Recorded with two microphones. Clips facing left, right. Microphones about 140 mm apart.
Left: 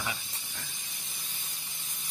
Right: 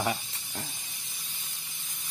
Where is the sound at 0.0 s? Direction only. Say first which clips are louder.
Right 7 dB; 40° right (ahead or behind).